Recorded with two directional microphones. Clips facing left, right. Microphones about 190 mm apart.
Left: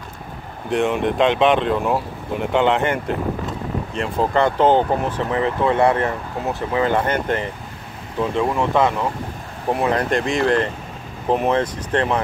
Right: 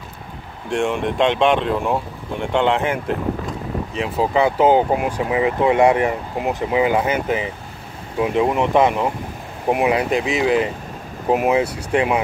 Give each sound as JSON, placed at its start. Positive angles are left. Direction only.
{"t": 0.7, "sound": "speech", "side_deg": 0}
{"t": 8.2, "sound": "speech", "side_deg": -15}